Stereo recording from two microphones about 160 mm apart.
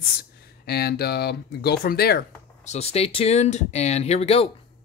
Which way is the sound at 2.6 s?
40° left (ahead or behind).